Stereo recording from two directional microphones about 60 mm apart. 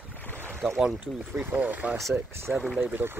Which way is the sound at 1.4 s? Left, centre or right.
Right.